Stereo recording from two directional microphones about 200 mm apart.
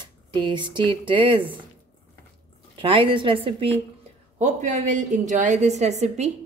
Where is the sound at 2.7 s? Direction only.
25° right (ahead or behind).